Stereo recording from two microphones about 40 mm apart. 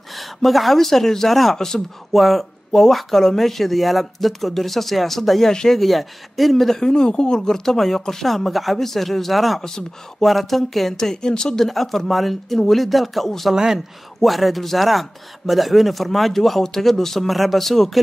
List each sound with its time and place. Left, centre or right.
0.1 s speech: centre
5.5 s speech: centre
5.8 s speech: centre
6.9 s speech: left; by 9.6 s centre
9.6 s speech: centre
10.2 s speech: centre
11.6 s speech: centre